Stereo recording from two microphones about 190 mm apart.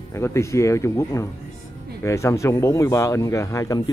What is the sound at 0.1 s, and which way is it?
Speech, 15° left (ahead or behind).